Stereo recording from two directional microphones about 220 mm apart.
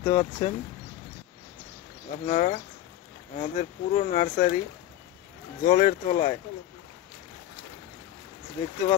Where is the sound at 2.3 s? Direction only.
35° left (ahead or behind).